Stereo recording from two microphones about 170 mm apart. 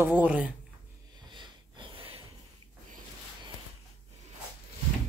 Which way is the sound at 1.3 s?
30° right (ahead or behind).